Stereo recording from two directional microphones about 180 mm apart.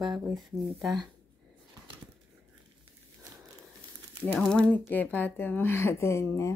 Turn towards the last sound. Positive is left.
turn(degrees=15)  # may be behind; listen again after turning